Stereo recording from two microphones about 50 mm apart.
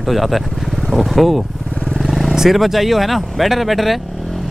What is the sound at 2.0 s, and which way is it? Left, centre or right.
Vehicle, centre.